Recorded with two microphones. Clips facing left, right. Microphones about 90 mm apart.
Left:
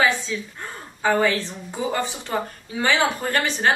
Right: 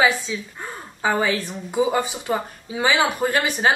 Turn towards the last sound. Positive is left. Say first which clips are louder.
# right 2 dB
turn(degrees=-10)  # may be behind; listen again after turning